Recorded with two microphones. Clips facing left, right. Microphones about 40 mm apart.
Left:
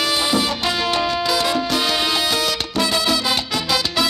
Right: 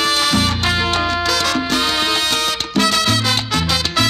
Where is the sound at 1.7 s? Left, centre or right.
Right.